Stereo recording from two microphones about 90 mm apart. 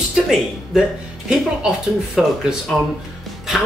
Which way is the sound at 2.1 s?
10° right (ahead or behind).